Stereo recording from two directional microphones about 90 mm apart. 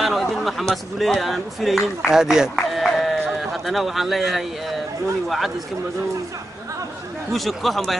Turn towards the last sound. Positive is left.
turn(degrees=0)  # may be behind; listen again after turning